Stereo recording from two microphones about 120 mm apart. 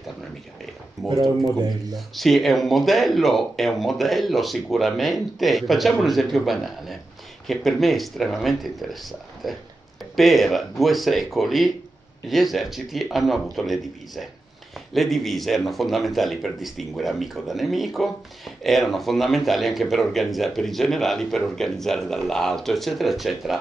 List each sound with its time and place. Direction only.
1.0 s speech: 30° right (ahead or behind)
2.0 s a man's voice: centre (ahead or behind)